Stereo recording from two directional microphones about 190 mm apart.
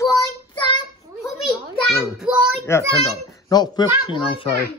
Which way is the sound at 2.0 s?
5° right (ahead or behind).